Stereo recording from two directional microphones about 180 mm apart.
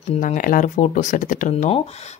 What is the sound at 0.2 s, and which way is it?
Speech, 50° left (ahead or behind).